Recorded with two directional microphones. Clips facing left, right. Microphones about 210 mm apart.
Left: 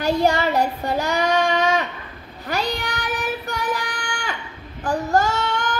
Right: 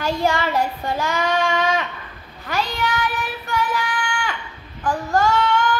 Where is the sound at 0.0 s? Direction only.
40° left (ahead or behind).